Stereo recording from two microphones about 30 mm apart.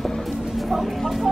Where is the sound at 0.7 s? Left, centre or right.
Centre.